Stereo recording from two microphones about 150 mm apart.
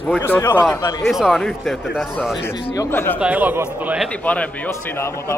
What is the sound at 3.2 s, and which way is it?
Speech, 10° right (ahead or behind).